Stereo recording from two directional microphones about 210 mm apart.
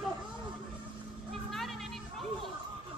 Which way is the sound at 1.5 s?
Centre (ahead or behind).